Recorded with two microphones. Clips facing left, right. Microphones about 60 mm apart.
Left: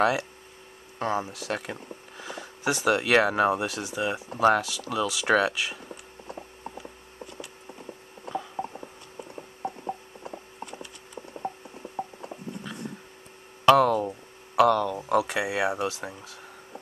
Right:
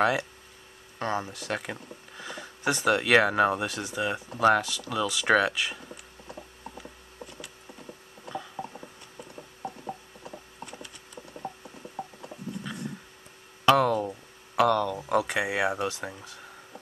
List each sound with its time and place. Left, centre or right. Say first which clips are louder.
0.9 s speech: left 2 dB; centre
2.1 s speech: even; centre
6.3 s a sound: left 3 dB; centre
9.6 s mechanisms: left 4 dB; centre
10.2 s a sound: left 3 dB; left
11.3 s mechanisms: left 4 dB; centre
13.7 s speech: left 3 dB; centre